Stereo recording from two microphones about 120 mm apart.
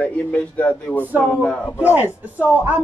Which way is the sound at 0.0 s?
10° left (ahead or behind).